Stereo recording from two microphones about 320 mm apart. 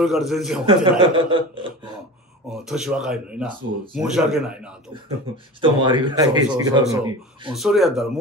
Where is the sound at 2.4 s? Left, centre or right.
Centre.